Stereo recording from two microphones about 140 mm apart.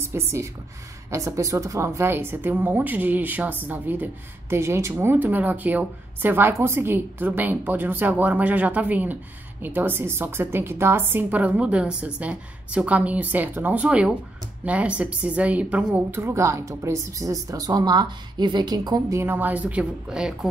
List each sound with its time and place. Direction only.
0.0 s a woman's voice: 20° right (ahead or behind)